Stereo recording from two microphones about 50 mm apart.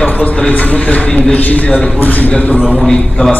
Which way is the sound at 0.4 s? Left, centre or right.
Left.